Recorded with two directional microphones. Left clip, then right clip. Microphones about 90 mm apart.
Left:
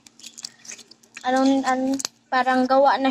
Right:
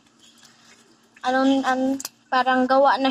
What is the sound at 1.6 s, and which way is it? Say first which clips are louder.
Speech: even; 20° left (ahead or behind).